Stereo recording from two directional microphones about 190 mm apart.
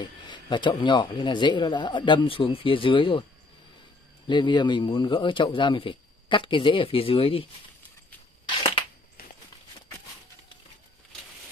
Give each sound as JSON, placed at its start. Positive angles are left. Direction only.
{"t": 0.0, "sound": "speech", "side_deg": 25}
{"t": 4.3, "sound": "speech", "side_deg": 25}